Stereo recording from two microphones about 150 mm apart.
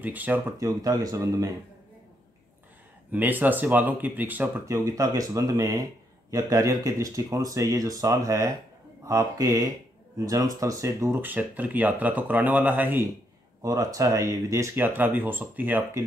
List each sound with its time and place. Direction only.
0.0 s speech: 10° right (ahead or behind)
3.1 s speech: 10° right (ahead or behind)
13.6 s speech: 25° right (ahead or behind)